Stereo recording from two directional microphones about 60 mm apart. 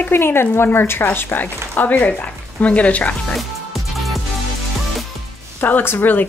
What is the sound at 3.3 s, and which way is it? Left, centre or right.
Music, centre.